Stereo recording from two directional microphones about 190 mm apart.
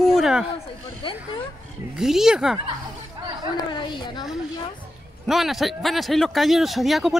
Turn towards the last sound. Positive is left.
turn(degrees=0)  # may be behind; listen again after turning